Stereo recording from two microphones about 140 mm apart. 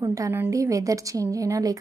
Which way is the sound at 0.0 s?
25° right (ahead or behind).